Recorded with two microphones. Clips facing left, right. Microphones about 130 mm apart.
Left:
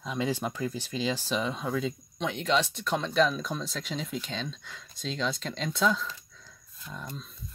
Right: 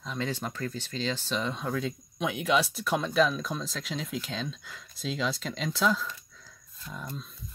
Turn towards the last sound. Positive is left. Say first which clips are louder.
# right 1 dB
turn(degrees=-5)  # may be behind; listen again after turning